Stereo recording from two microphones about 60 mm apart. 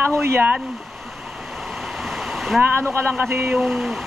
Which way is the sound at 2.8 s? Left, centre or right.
Right.